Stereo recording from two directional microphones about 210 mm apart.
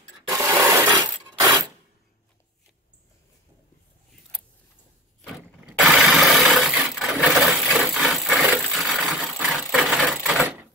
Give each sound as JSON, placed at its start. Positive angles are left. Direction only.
{"t": 0.6, "sound": "rub", "side_deg": -10}
{"t": 5.2, "sound": "wood", "side_deg": 0}